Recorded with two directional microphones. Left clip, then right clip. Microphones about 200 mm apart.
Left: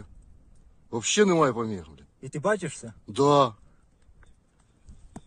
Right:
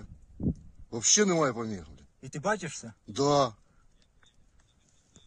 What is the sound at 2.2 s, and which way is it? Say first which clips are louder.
Speech: left 4 dB; 25° left (ahead or behind).